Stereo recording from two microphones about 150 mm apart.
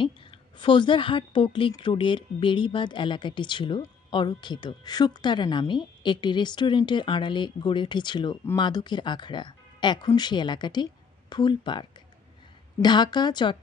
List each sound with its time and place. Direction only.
0.0 s a woman's voice: 35° left (ahead or behind)